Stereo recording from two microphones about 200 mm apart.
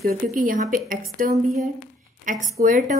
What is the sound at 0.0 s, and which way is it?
A woman's voice, 40° right (ahead or behind).